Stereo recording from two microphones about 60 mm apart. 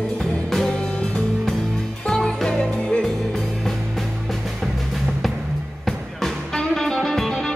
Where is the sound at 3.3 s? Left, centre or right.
Centre.